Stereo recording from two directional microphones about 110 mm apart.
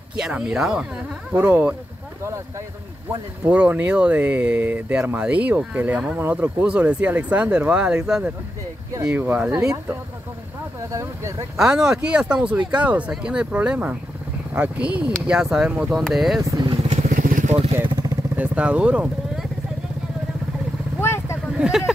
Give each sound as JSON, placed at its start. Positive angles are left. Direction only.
{"t": 0.2, "sound": "speech", "side_deg": -5}
{"t": 3.4, "sound": "speech", "side_deg": -10}
{"t": 10.9, "sound": "speech", "side_deg": -25}
{"t": 11.5, "sound": "speech", "side_deg": -5}
{"t": 16.4, "sound": "vehicle", "side_deg": -35}
{"t": 17.8, "sound": "vehicle", "side_deg": -40}
{"t": 18.3, "sound": "speech", "side_deg": -15}
{"t": 21.0, "sound": "vehicle", "side_deg": 25}
{"t": 21.5, "sound": "a sound", "side_deg": -5}